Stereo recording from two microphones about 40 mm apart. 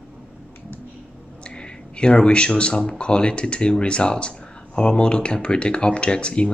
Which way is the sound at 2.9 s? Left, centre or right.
Left.